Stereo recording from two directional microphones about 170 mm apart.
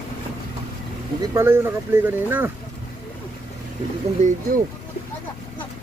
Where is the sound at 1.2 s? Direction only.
20° right (ahead or behind).